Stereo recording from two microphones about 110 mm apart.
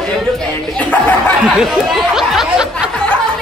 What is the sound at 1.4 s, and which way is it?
Speech, 5° right (ahead or behind).